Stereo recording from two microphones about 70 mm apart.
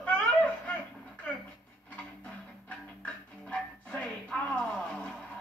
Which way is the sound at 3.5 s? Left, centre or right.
Centre.